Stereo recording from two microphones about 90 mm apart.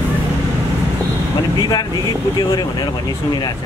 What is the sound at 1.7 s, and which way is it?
Speech, 50° left (ahead or behind).